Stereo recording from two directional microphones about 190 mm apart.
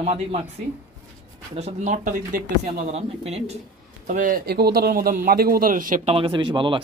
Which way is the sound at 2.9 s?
35° right (ahead or behind).